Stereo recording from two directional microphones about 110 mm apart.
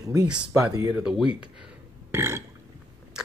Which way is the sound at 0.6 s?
30° right (ahead or behind).